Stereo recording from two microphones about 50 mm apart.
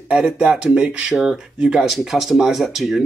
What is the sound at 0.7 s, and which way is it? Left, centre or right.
Speech, centre.